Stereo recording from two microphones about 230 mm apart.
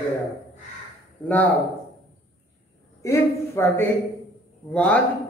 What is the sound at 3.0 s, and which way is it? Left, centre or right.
A man's voice, centre.